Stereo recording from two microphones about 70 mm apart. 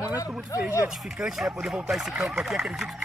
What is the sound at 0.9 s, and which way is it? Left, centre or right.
Speech, centre.